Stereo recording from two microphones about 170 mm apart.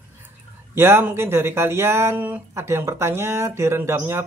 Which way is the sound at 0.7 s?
15° right (ahead or behind).